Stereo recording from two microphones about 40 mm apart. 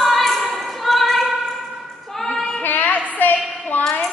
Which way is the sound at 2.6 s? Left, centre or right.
Left.